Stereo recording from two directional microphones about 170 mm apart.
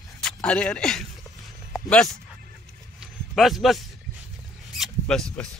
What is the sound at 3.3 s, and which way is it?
Speech, centre (ahead or behind).